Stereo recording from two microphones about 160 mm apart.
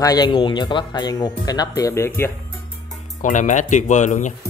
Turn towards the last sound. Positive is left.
turn(degrees=50)  # may be behind; listen again after turning